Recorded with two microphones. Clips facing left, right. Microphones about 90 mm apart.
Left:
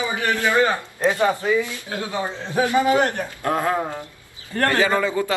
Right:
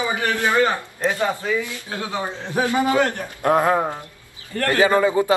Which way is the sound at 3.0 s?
20° left (ahead or behind).